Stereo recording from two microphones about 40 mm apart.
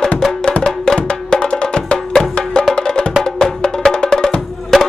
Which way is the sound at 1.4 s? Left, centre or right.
Left.